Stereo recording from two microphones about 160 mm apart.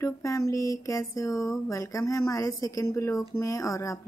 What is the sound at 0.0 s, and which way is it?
Speech, 20° left (ahead or behind).